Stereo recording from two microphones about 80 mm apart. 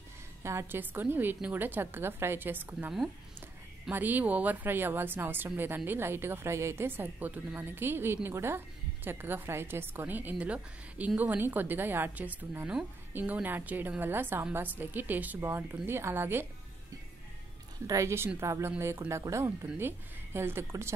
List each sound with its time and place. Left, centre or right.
0.4 s a woman's voice: right
3.9 s a woman's voice: right
17.8 s speech: right